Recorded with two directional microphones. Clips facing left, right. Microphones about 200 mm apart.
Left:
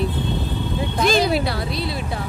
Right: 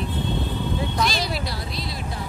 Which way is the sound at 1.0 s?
55° left (ahead or behind).